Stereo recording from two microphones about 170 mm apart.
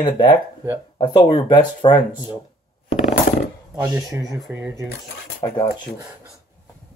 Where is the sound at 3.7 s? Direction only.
10° right (ahead or behind).